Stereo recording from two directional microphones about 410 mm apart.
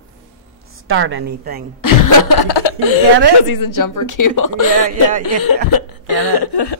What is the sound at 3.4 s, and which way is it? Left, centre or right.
Speech, left.